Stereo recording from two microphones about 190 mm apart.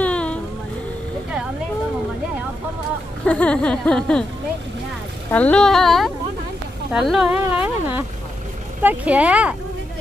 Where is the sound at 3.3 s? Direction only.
5° left (ahead or behind).